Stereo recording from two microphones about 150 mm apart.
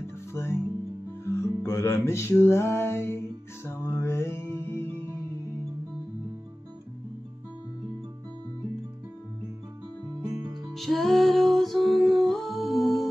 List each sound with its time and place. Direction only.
0.3 s music: 15° left (ahead or behind)
10.2 s music: 25° right (ahead or behind)
10.7 s music: centre (ahead or behind)